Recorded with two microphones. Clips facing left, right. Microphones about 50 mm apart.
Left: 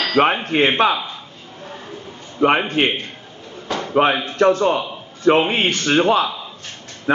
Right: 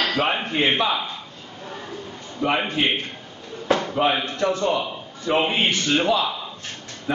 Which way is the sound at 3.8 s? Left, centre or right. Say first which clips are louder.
Left 10 dB; left.